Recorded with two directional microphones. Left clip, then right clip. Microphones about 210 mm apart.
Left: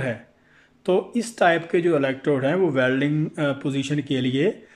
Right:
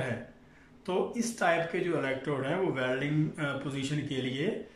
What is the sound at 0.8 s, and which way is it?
Speech, 40° left (ahead or behind).